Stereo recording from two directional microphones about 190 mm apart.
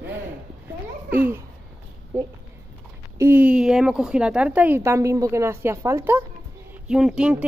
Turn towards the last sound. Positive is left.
turn(degrees=-5)  # may be behind; listen again after turning